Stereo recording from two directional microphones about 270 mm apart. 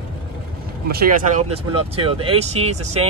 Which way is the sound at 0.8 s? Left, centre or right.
Right.